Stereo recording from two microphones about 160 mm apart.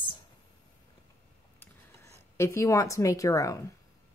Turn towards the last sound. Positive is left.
turn(degrees=20)  # may be behind; listen again after turning